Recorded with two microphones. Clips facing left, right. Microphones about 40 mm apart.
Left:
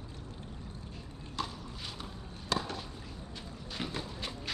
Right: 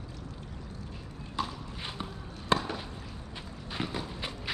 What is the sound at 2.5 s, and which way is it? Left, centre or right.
Chop, right.